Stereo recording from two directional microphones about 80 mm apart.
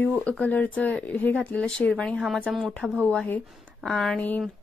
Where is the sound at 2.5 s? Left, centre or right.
Centre.